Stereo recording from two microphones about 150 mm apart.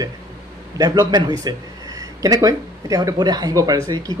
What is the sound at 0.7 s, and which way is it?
Speech, 25° right (ahead or behind).